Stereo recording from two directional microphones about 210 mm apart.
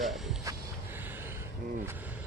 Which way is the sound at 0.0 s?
Centre (ahead or behind).